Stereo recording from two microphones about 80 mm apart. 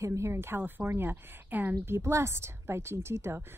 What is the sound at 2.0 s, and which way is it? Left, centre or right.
Speech, right.